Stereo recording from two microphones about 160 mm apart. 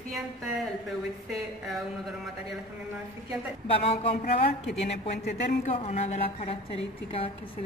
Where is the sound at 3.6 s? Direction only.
35° left (ahead or behind).